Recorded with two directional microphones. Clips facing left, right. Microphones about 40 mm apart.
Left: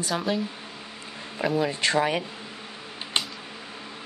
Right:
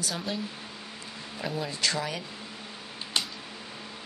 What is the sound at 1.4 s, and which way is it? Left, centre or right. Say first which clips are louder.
Speech: left 9 dB; centre.